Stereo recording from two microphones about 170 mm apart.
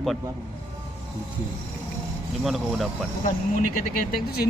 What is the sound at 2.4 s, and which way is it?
Speech, centre (ahead or behind).